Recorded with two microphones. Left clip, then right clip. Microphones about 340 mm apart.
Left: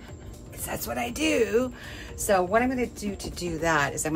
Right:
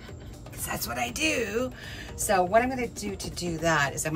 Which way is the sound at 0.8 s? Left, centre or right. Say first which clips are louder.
Left 1 dB; centre.